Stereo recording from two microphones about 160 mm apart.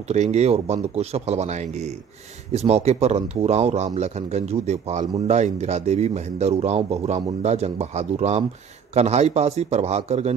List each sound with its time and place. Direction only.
0.1 s speech: 45° right (ahead or behind)